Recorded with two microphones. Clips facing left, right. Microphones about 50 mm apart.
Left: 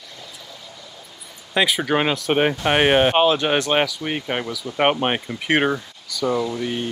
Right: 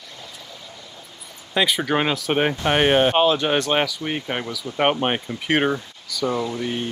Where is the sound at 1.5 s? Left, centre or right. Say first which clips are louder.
Left 1 dB; centre.